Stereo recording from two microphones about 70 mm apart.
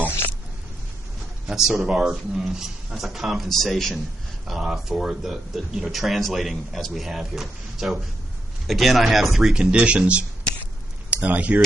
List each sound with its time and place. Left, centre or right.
1.5 s speech: centre; by 11.6 s right